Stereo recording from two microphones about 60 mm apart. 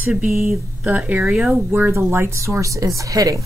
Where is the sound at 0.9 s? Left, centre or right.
Right.